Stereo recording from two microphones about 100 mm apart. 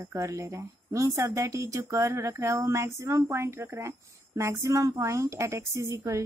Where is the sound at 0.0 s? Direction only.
30° right (ahead or behind).